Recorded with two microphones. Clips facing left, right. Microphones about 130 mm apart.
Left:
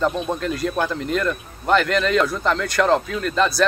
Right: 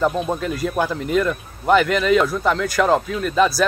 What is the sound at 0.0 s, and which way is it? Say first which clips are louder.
Speech: right 2 dB; 5° right (ahead or behind).